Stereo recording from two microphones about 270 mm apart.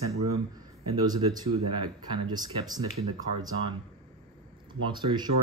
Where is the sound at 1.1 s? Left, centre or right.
Centre.